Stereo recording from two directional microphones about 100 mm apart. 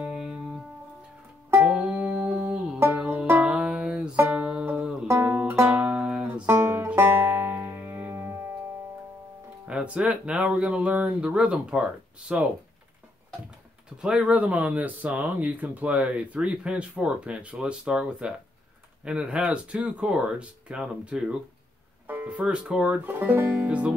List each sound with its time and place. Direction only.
0.0 s music: 10° right (ahead or behind)
1.5 s music: 15° right (ahead or behind)
9.7 s speech: 10° right (ahead or behind)
13.8 s speech: 10° right (ahead or behind)